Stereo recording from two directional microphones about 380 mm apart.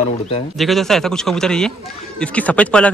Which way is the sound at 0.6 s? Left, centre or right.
Centre.